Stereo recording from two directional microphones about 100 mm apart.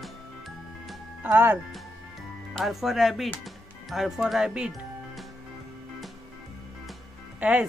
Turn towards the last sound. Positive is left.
turn(degrees=-10)  # may be behind; listen again after turning